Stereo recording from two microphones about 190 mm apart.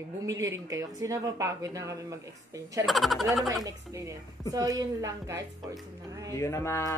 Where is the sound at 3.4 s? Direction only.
20° right (ahead or behind).